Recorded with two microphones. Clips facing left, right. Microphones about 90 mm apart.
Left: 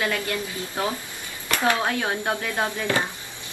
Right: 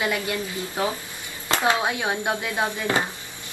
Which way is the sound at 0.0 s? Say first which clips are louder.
Right 1 dB; 15° right (ahead or behind).